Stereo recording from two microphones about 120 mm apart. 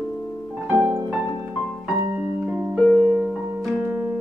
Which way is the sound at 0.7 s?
20° right (ahead or behind).